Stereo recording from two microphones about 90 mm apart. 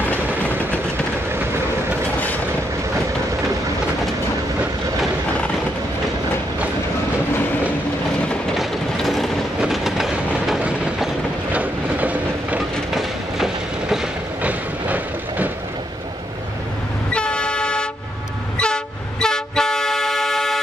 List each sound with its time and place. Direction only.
2.1 s vehicle: 20° left (ahead or behind)
8.5 s train: centre (ahead or behind)
11.5 s train: 15° right (ahead or behind)
12.9 s train: 5° right (ahead or behind)
14.4 s train: 15° right (ahead or behind)
17.1 s train: 10° left (ahead or behind)
18.6 s vehicle: 10° left (ahead or behind)